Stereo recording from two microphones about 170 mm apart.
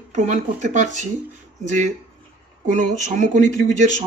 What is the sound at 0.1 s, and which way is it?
Speech, 45° right (ahead or behind).